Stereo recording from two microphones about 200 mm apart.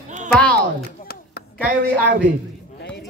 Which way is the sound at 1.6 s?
60° right (ahead or behind).